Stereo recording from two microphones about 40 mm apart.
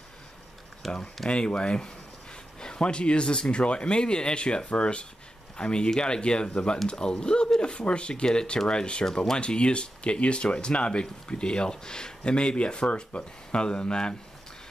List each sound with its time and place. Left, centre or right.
0.8 s speech: centre
1.3 s speech: left
9.4 s speech: left